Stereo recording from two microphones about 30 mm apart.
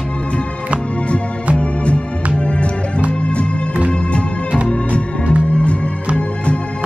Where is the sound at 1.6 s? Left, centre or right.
Left.